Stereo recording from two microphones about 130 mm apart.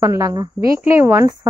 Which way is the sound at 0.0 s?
25° right (ahead or behind).